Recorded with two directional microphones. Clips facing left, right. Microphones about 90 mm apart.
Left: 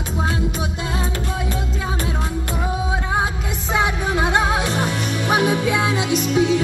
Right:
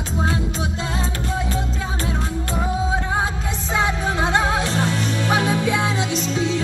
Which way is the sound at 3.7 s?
15° left (ahead or behind).